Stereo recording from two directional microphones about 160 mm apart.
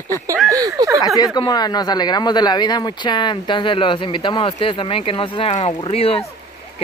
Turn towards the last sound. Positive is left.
turn(degrees=35)  # may be behind; listen again after turning